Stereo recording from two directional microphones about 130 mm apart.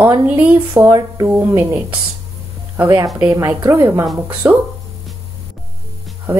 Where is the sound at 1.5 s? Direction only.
20° right (ahead or behind).